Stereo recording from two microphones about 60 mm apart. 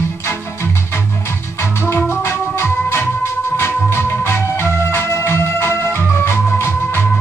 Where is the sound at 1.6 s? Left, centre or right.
Left.